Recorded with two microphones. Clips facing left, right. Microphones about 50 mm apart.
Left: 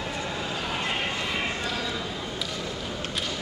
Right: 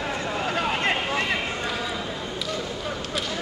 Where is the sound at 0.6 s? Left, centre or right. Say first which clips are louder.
Right 5 dB; right.